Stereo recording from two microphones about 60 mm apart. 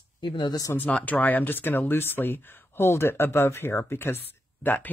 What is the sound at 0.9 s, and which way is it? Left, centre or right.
Speech, left.